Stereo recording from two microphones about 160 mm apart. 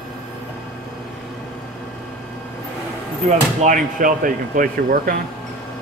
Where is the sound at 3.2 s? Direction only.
50° right (ahead or behind).